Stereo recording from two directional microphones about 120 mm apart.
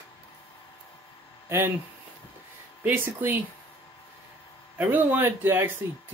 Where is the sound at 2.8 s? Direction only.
15° right (ahead or behind).